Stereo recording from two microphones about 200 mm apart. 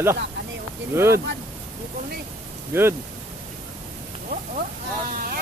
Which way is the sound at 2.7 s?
10° right (ahead or behind).